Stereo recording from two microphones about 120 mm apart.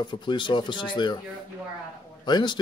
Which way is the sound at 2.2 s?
40° left (ahead or behind).